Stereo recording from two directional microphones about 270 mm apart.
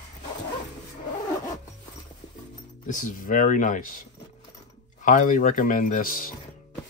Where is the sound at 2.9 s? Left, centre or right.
Left.